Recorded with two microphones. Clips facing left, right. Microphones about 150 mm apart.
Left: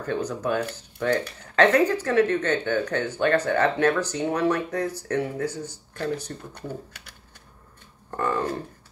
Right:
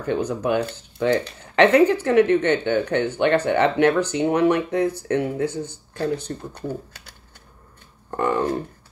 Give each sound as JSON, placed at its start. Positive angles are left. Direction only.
{"t": 0.0, "sound": "speech", "side_deg": -15}
{"t": 6.5, "sound": "speech", "side_deg": -30}
{"t": 8.2, "sound": "speech", "side_deg": -20}